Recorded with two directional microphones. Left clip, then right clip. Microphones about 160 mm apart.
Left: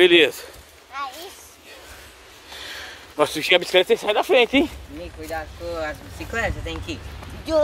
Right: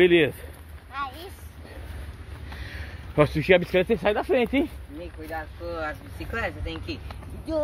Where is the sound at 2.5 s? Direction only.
10° left (ahead or behind).